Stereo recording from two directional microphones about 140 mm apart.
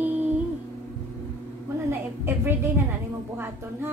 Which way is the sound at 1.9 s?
20° right (ahead or behind).